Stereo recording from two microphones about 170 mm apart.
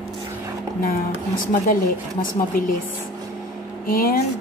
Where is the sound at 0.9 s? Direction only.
55° left (ahead or behind).